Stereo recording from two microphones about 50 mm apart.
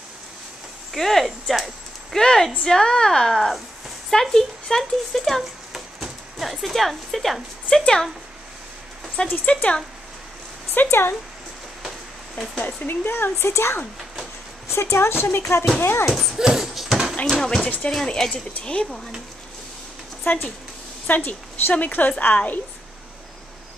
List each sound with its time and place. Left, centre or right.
0.9 s a woman's voice: centre
7.7 s a woman's voice: centre
9.5 s speech: left
10.7 s speech: left
12.5 s speech: left
12.8 s speech: left
13.5 s speech: left
16.1 s speech: centre
16.3 s a sound: centre
17.3 s a woman's voice: centre
17.6 s speech: left
18.0 s a woman's voice: centre
20.2 s a woman's voice: left